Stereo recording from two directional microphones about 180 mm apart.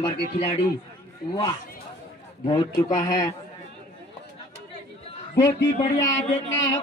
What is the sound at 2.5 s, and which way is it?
Speech, 25° left (ahead or behind).